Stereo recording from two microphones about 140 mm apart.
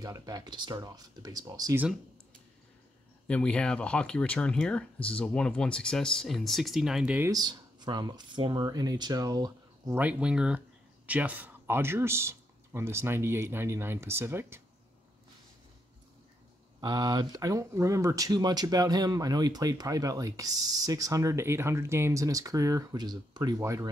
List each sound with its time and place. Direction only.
0.0 s speech: 25° right (ahead or behind)
3.3 s speech: 10° left (ahead or behind)
7.2 s speech: 30° right (ahead or behind)
9.9 s speech: 10° right (ahead or behind)
16.8 s speech: 30° right (ahead or behind)